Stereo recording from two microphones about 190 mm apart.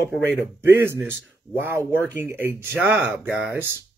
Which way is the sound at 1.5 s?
10° right (ahead or behind).